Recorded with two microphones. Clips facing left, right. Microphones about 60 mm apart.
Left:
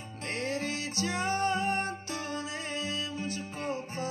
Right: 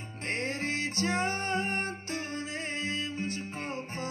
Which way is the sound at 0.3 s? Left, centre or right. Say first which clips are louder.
Right 1 dB; right.